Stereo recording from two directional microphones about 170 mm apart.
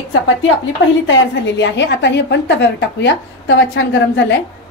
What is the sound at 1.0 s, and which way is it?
A woman's voice, 90° left.